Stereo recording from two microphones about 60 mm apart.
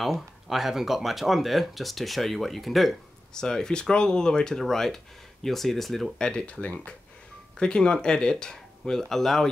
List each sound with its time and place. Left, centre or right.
0.0 s speech: centre
3.3 s speech: centre
6.1 s speech: centre